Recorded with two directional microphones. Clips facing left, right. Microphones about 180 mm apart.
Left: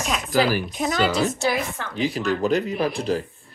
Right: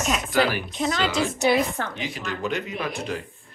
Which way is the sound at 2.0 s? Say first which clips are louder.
Left 13 dB; 35° left (ahead or behind).